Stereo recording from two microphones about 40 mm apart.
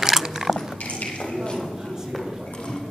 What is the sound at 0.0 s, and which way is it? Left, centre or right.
Biting, centre.